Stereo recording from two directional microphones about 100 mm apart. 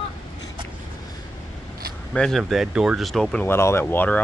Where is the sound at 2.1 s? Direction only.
5° left (ahead or behind).